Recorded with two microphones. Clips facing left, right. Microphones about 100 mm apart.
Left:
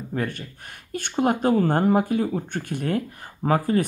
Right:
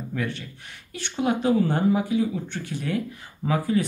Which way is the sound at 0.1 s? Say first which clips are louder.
Left 3 dB; 45° left (ahead or behind).